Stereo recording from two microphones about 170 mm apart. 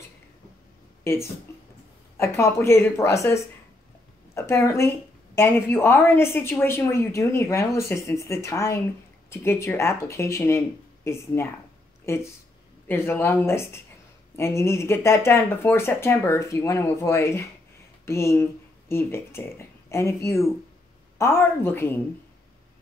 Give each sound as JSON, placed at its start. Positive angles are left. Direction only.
{"t": 1.0, "sound": "speech", "side_deg": 15}
{"t": 4.4, "sound": "speech", "side_deg": 15}
{"t": 12.8, "sound": "speech", "side_deg": 15}